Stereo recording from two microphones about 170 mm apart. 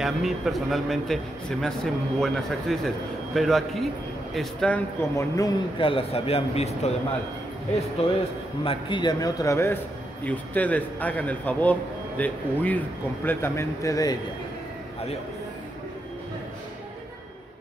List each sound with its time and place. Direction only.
0.0 s a man's voice: centre (ahead or behind)
5.8 s a man's voice: 30° left (ahead or behind)
8.0 s a man's voice: 35° left (ahead or behind)